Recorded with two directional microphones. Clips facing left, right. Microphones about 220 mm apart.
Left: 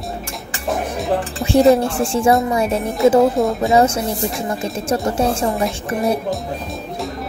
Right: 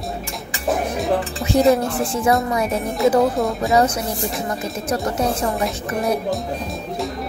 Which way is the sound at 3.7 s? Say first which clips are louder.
Left 1 dB; 25° left (ahead or behind).